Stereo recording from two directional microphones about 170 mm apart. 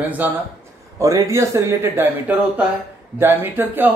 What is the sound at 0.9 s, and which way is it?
A man's voice, 20° right (ahead or behind).